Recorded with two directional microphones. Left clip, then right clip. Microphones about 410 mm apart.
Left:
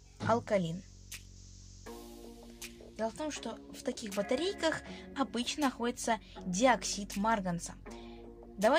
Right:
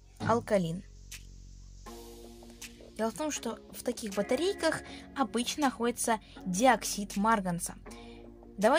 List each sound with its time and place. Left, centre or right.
0.3 s speech: left
3.0 s speech: left